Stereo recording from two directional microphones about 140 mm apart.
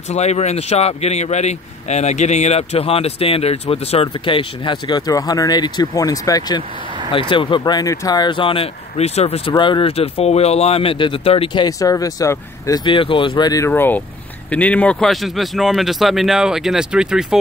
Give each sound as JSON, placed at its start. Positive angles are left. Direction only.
{"t": 0.1, "sound": "speech", "side_deg": 50}
{"t": 7.1, "sound": "speech", "side_deg": 40}
{"t": 9.6, "sound": "speech", "side_deg": 35}
{"t": 12.8, "sound": "speech", "side_deg": 40}
{"t": 13.7, "sound": "speech", "side_deg": 15}